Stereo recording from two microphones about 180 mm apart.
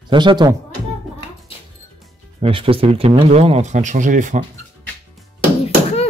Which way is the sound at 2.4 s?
30° right (ahead or behind).